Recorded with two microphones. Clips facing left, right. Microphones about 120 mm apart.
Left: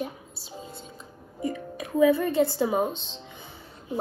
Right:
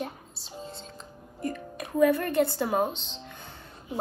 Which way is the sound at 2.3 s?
60° right (ahead or behind).